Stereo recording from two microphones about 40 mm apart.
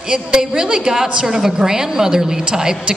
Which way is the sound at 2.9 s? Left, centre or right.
Right.